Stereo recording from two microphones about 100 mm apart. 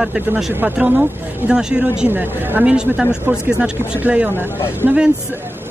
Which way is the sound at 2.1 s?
20° right (ahead or behind).